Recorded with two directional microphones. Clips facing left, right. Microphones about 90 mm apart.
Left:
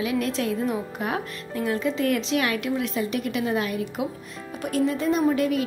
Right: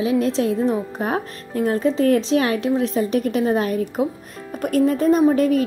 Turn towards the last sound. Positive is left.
turn(degrees=-40)  # may be behind; listen again after turning